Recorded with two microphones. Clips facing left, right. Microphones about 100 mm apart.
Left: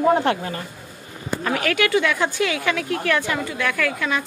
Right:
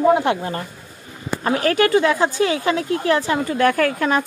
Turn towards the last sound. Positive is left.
turn(degrees=-45)  # may be behind; listen again after turning